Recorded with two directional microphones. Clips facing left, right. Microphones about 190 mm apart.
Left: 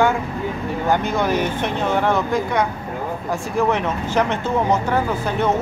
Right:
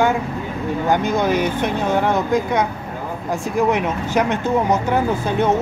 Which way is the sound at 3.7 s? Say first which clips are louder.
Right 1 dB; 15° right (ahead or behind).